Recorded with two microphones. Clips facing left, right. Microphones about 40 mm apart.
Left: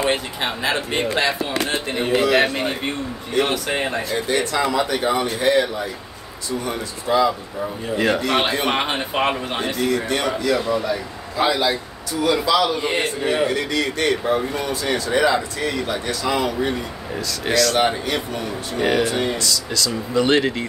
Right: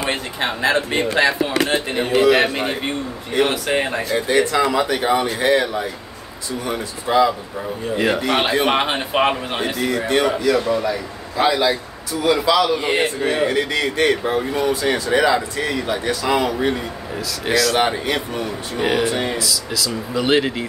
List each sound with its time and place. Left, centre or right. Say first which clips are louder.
1.2 s speech: right 4 dB; centre
6.6 s speech: right 2 dB; centre
13.2 s speech: right 1 dB; centre
13.5 s speech: right 2 dB; centre